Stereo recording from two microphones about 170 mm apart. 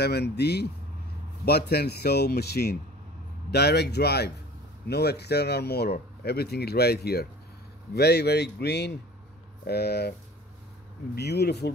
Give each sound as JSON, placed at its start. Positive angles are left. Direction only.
{"t": 0.0, "sound": "speech", "side_deg": 75}
{"t": 11.1, "sound": "speech", "side_deg": 75}